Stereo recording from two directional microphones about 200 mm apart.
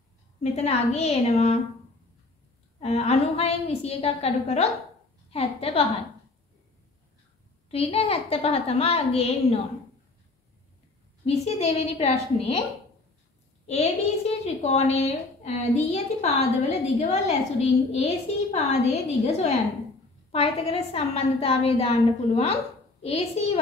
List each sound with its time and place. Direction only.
0.4 s a woman's voice: 30° left (ahead or behind)
2.8 s a woman's voice: 30° left (ahead or behind)
7.7 s a woman's voice: 30° left (ahead or behind)
11.2 s a woman's voice: 30° left (ahead or behind)
13.7 s a woman's voice: 30° left (ahead or behind)